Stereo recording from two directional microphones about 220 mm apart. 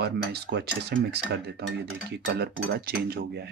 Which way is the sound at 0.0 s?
50° right (ahead or behind).